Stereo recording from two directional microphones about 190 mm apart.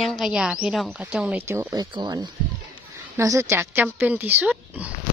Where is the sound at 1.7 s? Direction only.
20° right (ahead or behind); by 4.9 s 5° right (ahead or behind).